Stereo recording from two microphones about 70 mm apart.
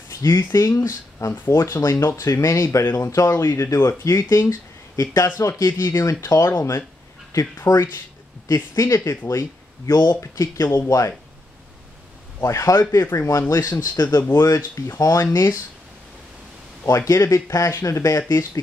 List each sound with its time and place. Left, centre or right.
0.1 s speech: left
4.3 s speech: left
9.8 s speech: left
10.4 s speech: left
12.4 s speech: left
12.9 s speech: left
16.8 s speech: left